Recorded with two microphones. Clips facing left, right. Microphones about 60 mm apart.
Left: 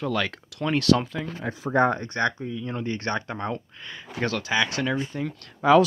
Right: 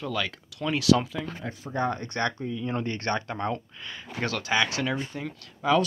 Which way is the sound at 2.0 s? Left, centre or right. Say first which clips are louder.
Left 3 dB; centre.